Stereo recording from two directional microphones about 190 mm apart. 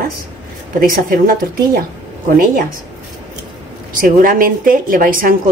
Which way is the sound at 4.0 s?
45° right (ahead or behind).